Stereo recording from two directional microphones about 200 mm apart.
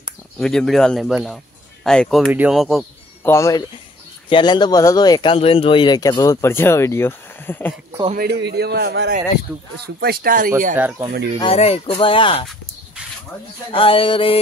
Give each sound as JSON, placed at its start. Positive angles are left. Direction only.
{"t": 0.4, "sound": "speech", "side_deg": 5}
{"t": 3.3, "sound": "speech", "side_deg": 15}
{"t": 8.1, "sound": "a man's voice", "side_deg": -55}
{"t": 11.3, "sound": "speech", "side_deg": 30}
{"t": 13.7, "sound": "speech", "side_deg": 25}